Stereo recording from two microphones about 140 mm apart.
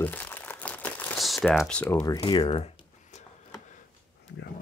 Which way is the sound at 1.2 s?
Centre (ahead or behind).